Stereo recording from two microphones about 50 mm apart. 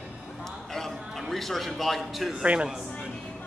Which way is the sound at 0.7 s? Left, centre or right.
Centre.